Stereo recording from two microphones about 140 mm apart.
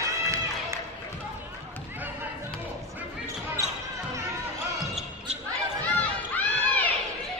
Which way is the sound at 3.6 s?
25° right (ahead or behind).